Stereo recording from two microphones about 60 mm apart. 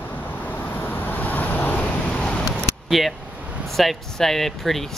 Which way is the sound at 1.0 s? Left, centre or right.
Left.